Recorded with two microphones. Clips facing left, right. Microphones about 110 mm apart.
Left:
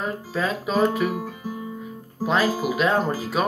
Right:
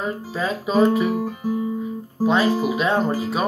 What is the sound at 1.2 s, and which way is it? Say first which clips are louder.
Guitar: right 8 dB; 20° right (ahead or behind).